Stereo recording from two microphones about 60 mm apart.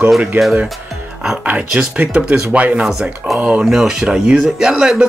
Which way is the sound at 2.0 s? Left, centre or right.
Centre.